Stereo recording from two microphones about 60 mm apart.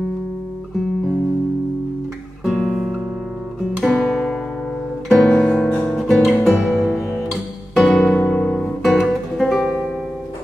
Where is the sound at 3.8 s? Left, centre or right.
Centre.